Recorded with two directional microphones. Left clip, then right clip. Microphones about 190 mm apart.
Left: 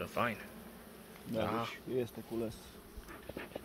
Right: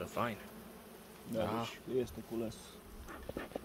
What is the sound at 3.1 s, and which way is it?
Dog, 25° right (ahead or behind).